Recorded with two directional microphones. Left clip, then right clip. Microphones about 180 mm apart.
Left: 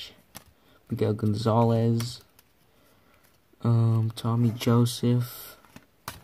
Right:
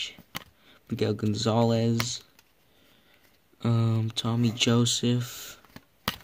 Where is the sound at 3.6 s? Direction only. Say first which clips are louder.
Even; 10° right (ahead or behind).